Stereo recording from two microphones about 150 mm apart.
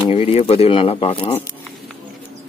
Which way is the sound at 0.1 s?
45° left (ahead or behind).